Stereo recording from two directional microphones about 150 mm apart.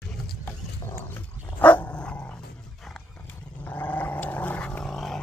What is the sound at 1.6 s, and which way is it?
Dog, 10° left (ahead or behind).